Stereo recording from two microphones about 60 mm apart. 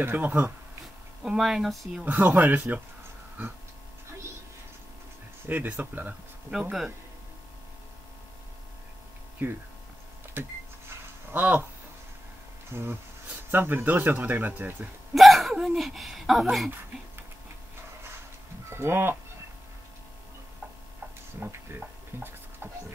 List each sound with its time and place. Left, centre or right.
0.0 s speech: right
1.2 s speech: centre
2.0 s speech: right
5.5 s speech: right
9.4 s speech: right
10.9 s a sound: right
12.7 s speech: right
15.1 s speech: centre
18.7 s speech: right
21.4 s speech: right
21.7 s a sound: right